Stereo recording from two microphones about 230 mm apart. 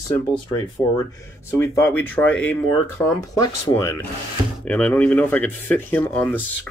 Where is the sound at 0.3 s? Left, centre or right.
Centre.